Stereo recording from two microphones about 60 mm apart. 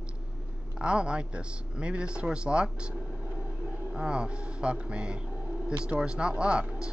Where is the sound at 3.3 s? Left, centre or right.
Right.